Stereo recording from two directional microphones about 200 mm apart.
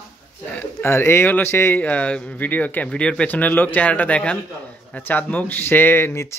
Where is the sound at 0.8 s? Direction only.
10° left (ahead or behind).